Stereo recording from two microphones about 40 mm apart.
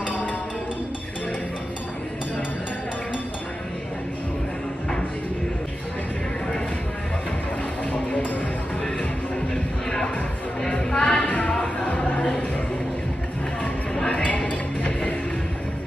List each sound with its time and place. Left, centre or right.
9.5 s music: centre
11.1 s a sound: left
14.2 s music: left
14.9 s music: left